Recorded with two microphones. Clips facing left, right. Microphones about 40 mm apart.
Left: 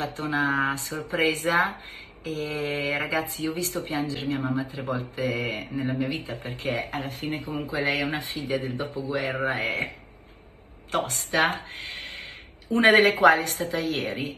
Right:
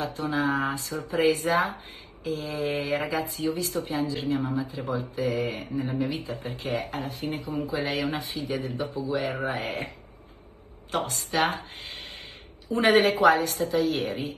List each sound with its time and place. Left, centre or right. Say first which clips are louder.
0.0 s speech: left 1 dB; left
10.9 s speech: left 2 dB; left